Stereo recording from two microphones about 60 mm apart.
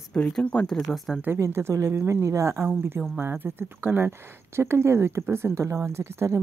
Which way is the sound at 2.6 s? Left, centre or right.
Right.